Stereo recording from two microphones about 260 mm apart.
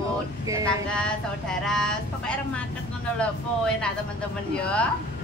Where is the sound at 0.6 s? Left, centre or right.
Centre.